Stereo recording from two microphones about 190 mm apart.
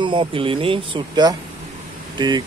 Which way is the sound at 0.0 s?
25° right (ahead or behind).